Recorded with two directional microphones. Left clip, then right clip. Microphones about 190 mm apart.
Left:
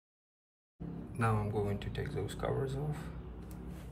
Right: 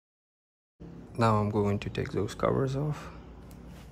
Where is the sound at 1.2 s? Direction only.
20° right (ahead or behind).